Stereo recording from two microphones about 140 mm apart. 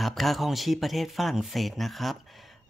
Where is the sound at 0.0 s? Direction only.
Centre (ahead or behind).